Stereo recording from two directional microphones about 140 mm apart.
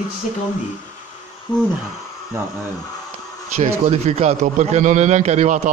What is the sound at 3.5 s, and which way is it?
A man's voice, 50° right (ahead or behind).